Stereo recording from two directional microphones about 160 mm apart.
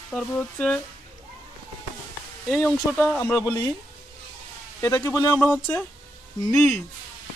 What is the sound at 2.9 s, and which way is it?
Speech, 10° left (ahead or behind).